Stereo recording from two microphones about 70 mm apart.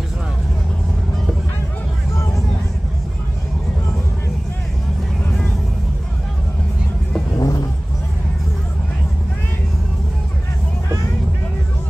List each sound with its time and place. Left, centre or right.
7.3 s vehicle: left